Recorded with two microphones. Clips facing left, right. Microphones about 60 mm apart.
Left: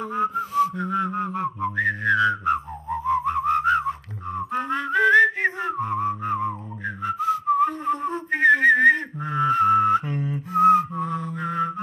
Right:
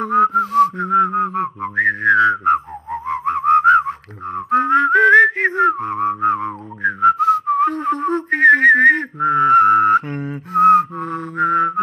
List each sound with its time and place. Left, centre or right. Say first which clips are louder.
0.0 s whistling: right 10 dB; right
0.7 s whistling: right 9 dB; right